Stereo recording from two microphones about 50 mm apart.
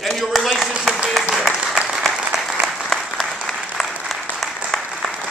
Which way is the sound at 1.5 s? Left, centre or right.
Centre.